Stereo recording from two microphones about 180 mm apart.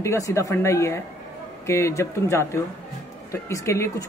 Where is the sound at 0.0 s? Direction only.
15° left (ahead or behind).